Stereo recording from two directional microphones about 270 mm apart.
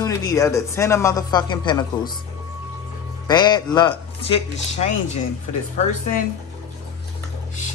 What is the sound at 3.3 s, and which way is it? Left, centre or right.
Speech, centre.